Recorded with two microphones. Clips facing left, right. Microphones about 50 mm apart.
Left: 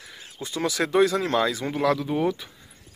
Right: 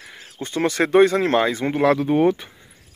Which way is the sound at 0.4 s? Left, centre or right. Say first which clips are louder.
Right 5 dB; right.